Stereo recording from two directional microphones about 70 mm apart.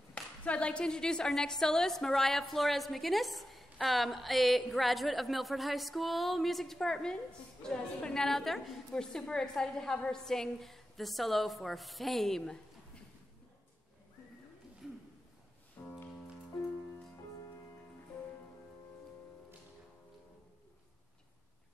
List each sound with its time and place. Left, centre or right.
0.1 s a woman's voice: centre
15.8 s music: left